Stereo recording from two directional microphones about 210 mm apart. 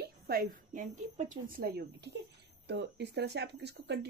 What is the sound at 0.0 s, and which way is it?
A woman's voice, 45° right (ahead or behind).